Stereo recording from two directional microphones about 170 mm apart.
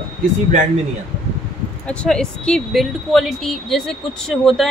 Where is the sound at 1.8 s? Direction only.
5° left (ahead or behind).